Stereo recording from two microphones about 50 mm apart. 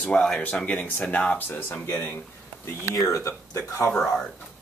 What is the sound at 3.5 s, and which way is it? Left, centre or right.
Speech, left.